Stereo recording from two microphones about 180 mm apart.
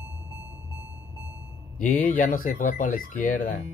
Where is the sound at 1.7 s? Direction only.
50° left (ahead or behind).